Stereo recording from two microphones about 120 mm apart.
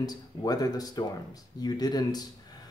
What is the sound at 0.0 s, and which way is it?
Speech, 35° left (ahead or behind).